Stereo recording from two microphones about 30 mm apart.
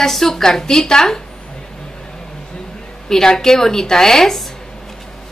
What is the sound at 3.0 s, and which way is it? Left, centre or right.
A woman's voice, centre.